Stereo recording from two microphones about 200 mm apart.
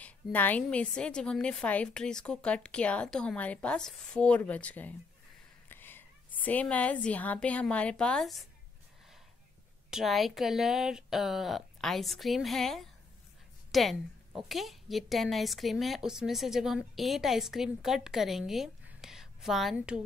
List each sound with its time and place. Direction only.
0.0 s a woman's voice: 10° left (ahead or behind)
9.8 s a woman's voice: centre (ahead or behind)